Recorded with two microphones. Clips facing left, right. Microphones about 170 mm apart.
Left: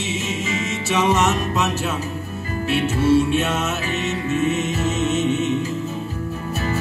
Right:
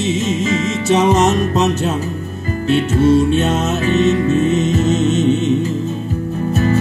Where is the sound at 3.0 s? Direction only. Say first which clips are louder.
Right 4 dB; 40° right (ahead or behind).